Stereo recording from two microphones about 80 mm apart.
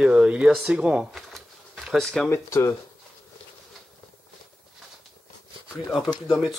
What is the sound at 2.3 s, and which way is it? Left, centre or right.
Speech, left.